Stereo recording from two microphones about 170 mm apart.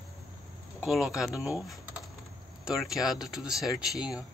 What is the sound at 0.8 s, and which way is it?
Speech, 5° right (ahead or behind).